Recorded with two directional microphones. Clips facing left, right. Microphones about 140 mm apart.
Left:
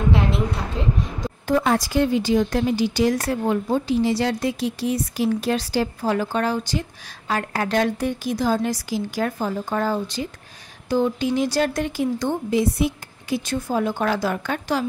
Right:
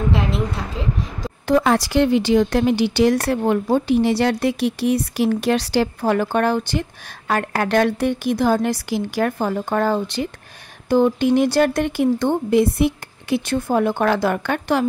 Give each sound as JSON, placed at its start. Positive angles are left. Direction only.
{"t": 0.1, "sound": "a woman's voice", "side_deg": 0}
{"t": 1.5, "sound": "speech", "side_deg": -75}